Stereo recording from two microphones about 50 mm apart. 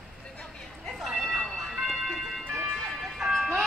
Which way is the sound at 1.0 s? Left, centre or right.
Centre.